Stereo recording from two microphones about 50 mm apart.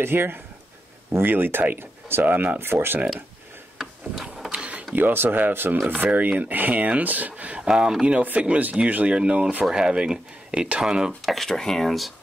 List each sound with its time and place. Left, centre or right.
0.0 s speech: right
2.2 s speech: right
2.6 s speech: right
3.7 s a sound: centre
4.5 s a sound: right
4.9 s speech: right
7.6 s speech: centre
8.2 s speech: right
9.1 s speech: right
11.2 s speech: centre